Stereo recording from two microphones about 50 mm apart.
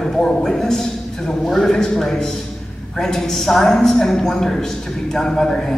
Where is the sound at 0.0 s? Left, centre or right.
Centre.